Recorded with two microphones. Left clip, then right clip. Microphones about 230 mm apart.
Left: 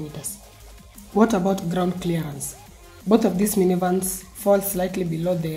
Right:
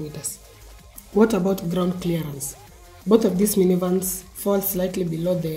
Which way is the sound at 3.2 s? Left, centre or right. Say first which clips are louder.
Right 1 dB; centre.